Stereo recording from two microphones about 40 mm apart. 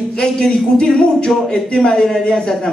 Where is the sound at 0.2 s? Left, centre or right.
Left.